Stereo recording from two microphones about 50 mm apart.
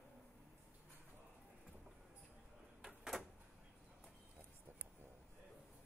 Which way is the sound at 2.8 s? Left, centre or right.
Centre.